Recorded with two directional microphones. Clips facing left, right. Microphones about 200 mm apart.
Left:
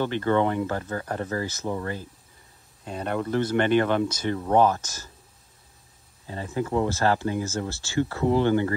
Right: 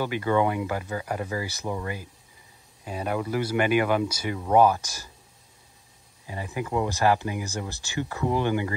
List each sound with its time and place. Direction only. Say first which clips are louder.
0.0 s speech: left 1 dB; 10° right (ahead or behind)
2.8 s speech: even; 5° right (ahead or behind)
6.2 s speech: left 3 dB; 15° right (ahead or behind)